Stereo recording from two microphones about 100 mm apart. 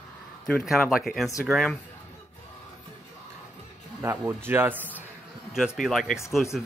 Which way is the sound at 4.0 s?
25° right (ahead or behind).